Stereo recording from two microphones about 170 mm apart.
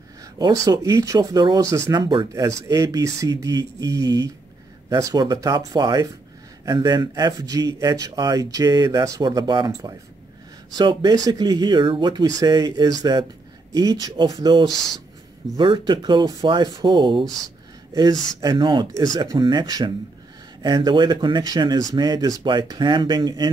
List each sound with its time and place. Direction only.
0.4 s speech: 20° right (ahead or behind)
14.7 s speech: centre (ahead or behind)
15.5 s speech: 30° right (ahead or behind)
18.4 s speech: 25° right (ahead or behind)